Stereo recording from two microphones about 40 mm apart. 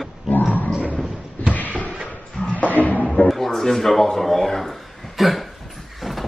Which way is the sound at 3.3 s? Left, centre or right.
Centre.